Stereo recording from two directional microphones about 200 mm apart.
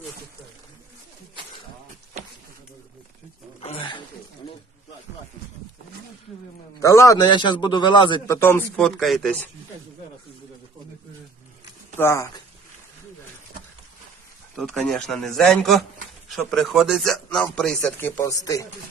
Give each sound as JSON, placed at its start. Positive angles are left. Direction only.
{"t": 3.6, "sound": "a sound", "side_deg": 25}
{"t": 6.8, "sound": "a man's voice", "side_deg": 15}
{"t": 8.4, "sound": "speech", "side_deg": 10}
{"t": 12.0, "sound": "speech", "side_deg": 15}
{"t": 14.6, "sound": "speech", "side_deg": 0}